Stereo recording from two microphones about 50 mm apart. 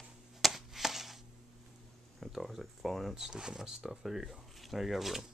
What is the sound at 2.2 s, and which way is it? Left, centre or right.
Speech, centre.